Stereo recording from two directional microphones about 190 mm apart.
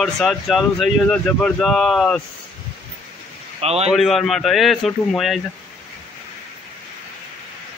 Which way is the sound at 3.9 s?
Centre (ahead or behind).